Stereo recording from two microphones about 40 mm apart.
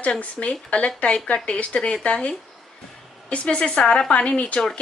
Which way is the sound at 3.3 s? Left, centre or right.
Left.